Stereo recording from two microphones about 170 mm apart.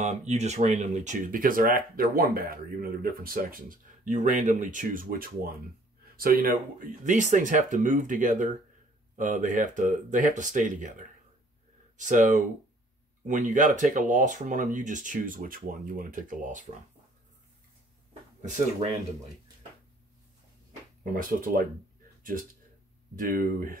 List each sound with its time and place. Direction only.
0.0 s speech: 45° right (ahead or behind)
18.4 s speech: 45° right (ahead or behind)
21.0 s speech: 55° right (ahead or behind)
23.1 s speech: 55° right (ahead or behind)